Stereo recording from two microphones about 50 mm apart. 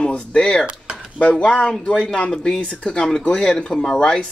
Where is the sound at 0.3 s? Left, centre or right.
Centre.